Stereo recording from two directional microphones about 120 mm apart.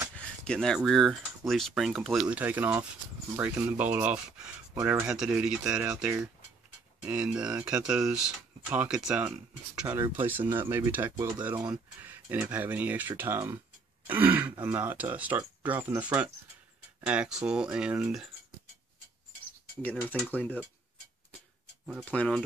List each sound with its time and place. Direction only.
0.1 s a sound: 10° left (ahead or behind)
0.8 s speech: centre (ahead or behind)
2.2 s speech: 15° right (ahead or behind)
9.9 s speech: 20° right (ahead or behind); by 18.3 s 5° right (ahead or behind)
20.1 s speech: 15° left (ahead or behind)
22.0 s speech: 10° left (ahead or behind)